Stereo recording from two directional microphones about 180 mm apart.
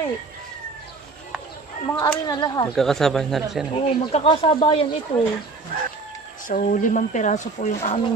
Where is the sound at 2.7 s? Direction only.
Centre (ahead or behind).